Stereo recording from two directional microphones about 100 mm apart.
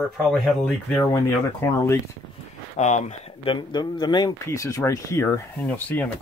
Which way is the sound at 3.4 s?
50° left (ahead or behind).